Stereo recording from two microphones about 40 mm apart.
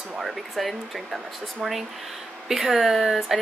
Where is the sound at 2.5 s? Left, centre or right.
Centre.